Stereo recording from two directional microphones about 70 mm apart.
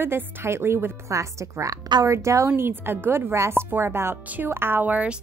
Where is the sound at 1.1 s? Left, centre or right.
Right.